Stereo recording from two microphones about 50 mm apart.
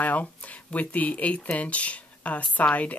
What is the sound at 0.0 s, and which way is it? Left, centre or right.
Speech, left.